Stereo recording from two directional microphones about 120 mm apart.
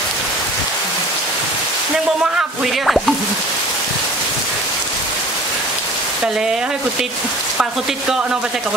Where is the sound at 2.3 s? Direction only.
Centre (ahead or behind).